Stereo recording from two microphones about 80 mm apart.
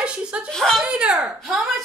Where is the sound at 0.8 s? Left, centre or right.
Centre.